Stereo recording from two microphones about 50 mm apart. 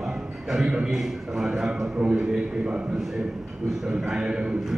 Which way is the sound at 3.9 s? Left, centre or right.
Centre.